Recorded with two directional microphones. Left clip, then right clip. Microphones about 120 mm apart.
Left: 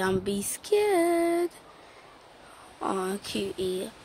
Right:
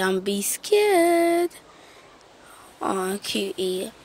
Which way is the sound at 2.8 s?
15° right (ahead or behind).